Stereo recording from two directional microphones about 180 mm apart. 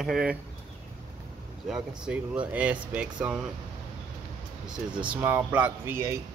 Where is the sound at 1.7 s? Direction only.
5° right (ahead or behind).